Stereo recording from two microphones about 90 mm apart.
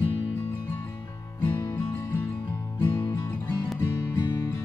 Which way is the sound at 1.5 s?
55° left (ahead or behind).